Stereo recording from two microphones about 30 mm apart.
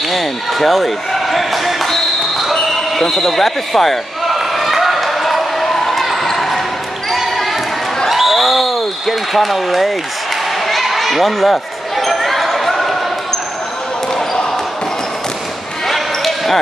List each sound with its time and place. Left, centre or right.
0.1 s basketball bounce: centre
3.1 s a man's voice: centre
4.4 s basketball bounce: centre
10.7 s a sound: centre
12.0 s basketball bounce: centre
14.1 s basketball bounce: left
15.9 s basketball bounce: centre